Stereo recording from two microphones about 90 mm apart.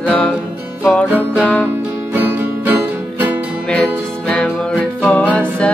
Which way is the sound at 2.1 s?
20° right (ahead or behind).